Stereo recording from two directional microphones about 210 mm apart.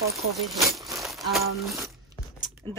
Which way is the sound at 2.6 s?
20° right (ahead or behind).